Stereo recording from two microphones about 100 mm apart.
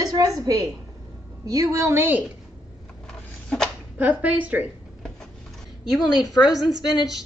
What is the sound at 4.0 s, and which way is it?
Speech, 15° right (ahead or behind).